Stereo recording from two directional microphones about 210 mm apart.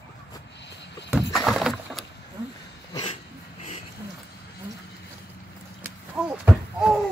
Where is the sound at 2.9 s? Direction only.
25° left (ahead or behind).